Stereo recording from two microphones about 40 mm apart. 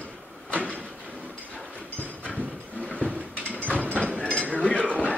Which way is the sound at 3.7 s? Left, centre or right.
Left.